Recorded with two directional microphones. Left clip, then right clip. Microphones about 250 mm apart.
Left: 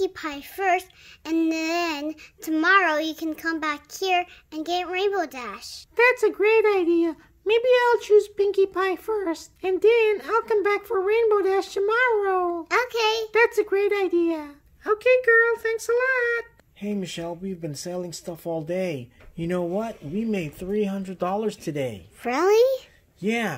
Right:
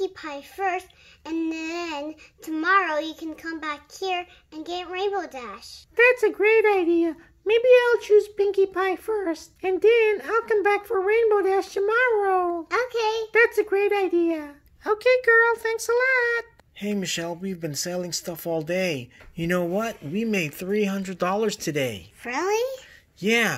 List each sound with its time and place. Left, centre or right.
0.0 s child singing: left
5.9 s speech: centre
12.6 s child singing: left
13.6 s speech: centre
22.2 s child singing: left
23.2 s speech: centre